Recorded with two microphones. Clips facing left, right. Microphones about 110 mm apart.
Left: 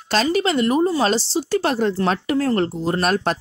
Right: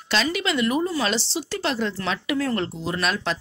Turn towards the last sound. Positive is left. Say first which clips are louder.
# left 6 dB
turn(degrees=45)  # may be behind; listen again after turning